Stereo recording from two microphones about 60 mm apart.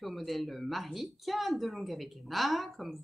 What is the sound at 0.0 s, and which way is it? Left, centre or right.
Speech, centre.